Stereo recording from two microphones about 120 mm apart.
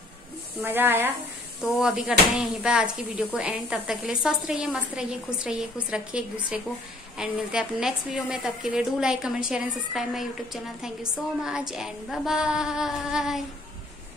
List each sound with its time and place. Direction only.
0.6 s a woman's voice: 15° right (ahead or behind)
1.6 s a woman's voice: 5° right (ahead or behind)